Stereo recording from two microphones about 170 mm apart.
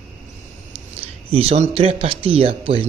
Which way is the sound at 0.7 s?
35° right (ahead or behind).